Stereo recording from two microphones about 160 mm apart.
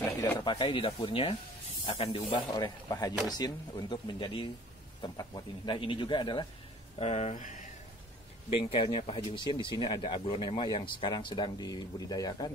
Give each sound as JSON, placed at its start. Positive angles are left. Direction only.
{"t": 0.4, "sound": "speech", "side_deg": 30}
{"t": 2.3, "sound": "speech", "side_deg": 25}
{"t": 7.0, "sound": "speech", "side_deg": 40}
{"t": 8.7, "sound": "speech", "side_deg": 30}